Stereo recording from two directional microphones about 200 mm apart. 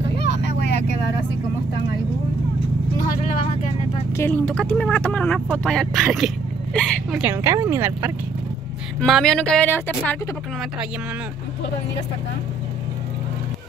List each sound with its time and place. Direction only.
0.2 s vehicle: 60° left (ahead or behind)
4.1 s speech: 10° left (ahead or behind)
7.1 s speech: 10° right (ahead or behind)
9.0 s speech: centre (ahead or behind)